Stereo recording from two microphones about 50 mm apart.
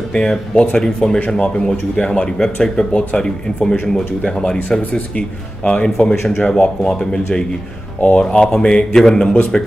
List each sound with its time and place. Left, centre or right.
0.1 s speech: centre